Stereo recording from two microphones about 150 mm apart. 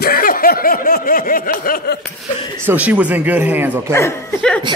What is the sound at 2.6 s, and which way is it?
Speech, 10° right (ahead or behind).